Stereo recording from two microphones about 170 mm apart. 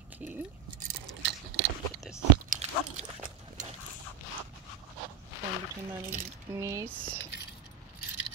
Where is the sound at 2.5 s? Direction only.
45° right (ahead or behind).